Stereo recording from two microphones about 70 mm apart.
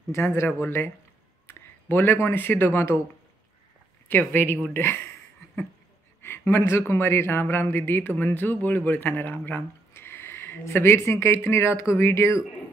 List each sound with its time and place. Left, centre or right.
0.5 s speech: left
4.1 s speech: left
6.2 s speech: left